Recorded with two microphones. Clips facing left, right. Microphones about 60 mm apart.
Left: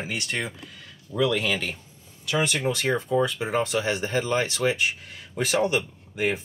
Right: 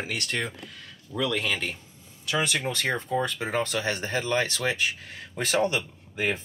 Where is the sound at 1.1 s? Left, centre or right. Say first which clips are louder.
Left 4 dB; centre.